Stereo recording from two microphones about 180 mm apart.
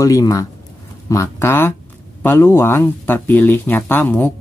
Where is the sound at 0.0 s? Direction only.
20° left (ahead or behind).